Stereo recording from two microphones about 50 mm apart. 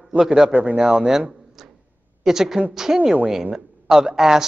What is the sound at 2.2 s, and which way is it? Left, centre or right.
A woman's voice, centre.